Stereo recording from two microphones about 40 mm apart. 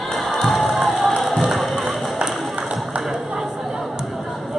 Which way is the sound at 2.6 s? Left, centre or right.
Centre.